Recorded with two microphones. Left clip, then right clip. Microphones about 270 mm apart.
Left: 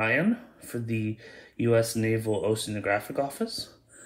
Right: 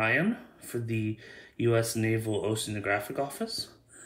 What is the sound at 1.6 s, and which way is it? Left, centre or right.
Speech, centre.